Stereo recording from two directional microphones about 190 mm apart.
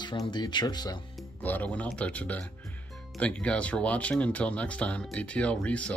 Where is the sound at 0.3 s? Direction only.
25° left (ahead or behind).